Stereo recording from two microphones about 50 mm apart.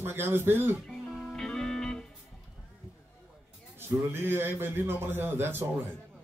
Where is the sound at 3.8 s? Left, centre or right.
Right.